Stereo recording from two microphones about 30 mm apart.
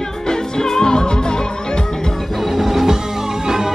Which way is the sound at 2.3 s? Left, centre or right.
Centre.